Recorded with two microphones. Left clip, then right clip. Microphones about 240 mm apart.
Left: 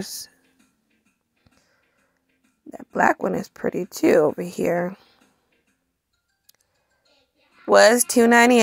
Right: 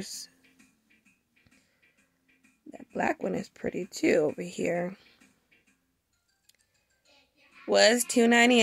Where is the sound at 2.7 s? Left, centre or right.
Centre.